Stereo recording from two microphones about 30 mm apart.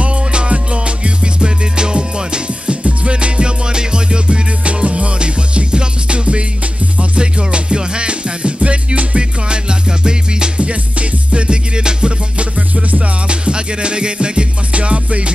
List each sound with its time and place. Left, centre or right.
0.0 s music: right
4.8 s music: right
10.6 s music: right
14.7 s music: right